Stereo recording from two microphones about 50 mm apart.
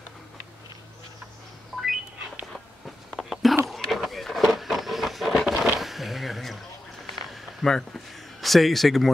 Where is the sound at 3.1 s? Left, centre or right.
Centre.